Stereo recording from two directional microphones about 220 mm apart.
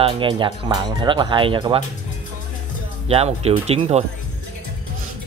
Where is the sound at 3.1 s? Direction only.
25° right (ahead or behind).